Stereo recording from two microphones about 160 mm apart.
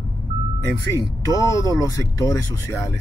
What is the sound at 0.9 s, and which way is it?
Speech, 20° left (ahead or behind).